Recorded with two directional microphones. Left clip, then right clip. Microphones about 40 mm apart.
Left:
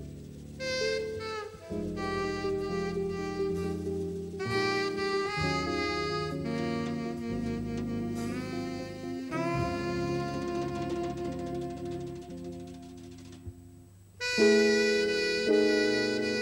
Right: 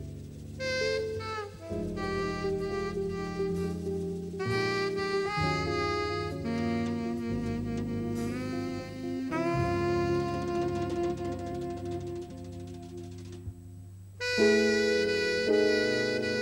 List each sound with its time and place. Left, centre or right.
0.6 s music: left
4.4 s saxophone: left
14.2 s music: left